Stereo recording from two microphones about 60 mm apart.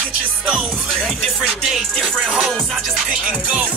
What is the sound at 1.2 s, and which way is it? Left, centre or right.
Music, centre.